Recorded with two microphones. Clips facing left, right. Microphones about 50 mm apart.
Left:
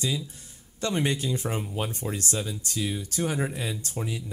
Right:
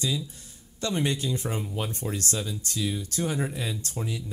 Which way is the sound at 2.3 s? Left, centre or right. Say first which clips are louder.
Left 1 dB; left.